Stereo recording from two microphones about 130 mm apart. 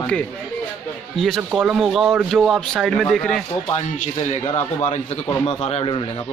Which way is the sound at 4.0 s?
60° left (ahead or behind).